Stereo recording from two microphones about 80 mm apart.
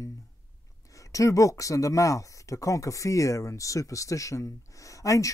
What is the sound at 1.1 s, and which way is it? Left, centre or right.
Speech, left.